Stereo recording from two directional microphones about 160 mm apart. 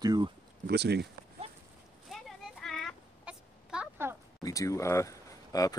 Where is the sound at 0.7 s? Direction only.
90° right.